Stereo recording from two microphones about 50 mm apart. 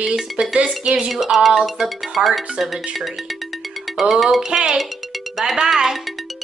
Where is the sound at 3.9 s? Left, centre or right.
Centre.